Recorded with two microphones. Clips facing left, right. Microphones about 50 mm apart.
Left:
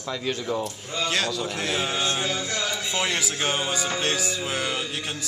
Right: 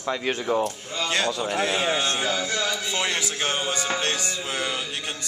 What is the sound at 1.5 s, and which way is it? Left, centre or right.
Speech, centre.